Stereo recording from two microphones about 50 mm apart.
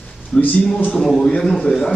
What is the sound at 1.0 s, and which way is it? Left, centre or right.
Speech, centre.